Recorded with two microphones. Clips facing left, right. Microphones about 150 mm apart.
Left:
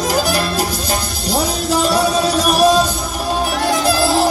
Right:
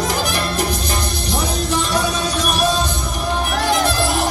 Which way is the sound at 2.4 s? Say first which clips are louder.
Left 6 dB; 40° left (ahead or behind).